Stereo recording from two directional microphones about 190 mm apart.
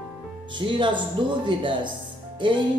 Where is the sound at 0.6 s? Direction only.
25° right (ahead or behind).